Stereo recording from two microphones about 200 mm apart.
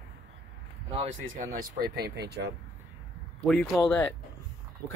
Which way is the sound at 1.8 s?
55° right (ahead or behind).